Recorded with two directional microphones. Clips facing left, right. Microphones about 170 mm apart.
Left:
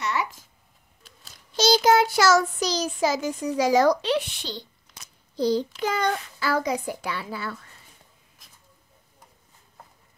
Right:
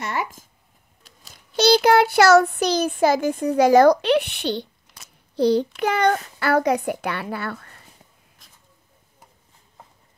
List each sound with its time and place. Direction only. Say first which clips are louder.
0.0 s a sound: right 1 dB; 50° right (ahead or behind)
1.6 s child singing: right 3 dB; 65° right (ahead or behind)
5.3 s a child's voice: right 5 dB; 65° right (ahead or behind)
5.8 s child singing: right 5 dB; 60° right (ahead or behind)